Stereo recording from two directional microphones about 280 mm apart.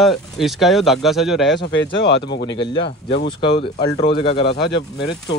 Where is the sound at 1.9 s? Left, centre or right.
Left.